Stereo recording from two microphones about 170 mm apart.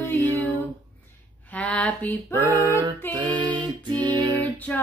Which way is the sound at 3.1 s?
25° right (ahead or behind).